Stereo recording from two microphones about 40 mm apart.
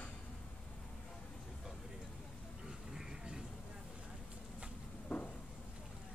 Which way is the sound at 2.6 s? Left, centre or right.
Centre.